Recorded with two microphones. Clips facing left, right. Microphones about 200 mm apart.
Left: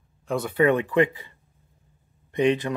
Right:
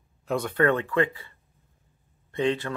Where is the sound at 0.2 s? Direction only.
Centre (ahead or behind); by 1.3 s 15° left (ahead or behind).